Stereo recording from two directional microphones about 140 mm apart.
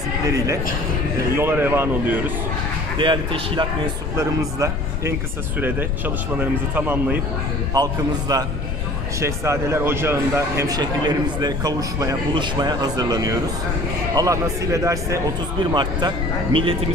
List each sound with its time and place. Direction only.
1.3 s speech: 15° right (ahead or behind)
3.0 s speech: 35° right (ahead or behind)
4.4 s a man's voice: 25° right (ahead or behind)
5.6 s speech: 15° right (ahead or behind)
7.7 s speech: 25° right (ahead or behind)
15.7 s speech: 35° right (ahead or behind)